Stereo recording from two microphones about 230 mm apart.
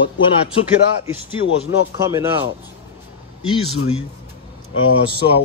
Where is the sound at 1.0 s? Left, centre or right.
Centre.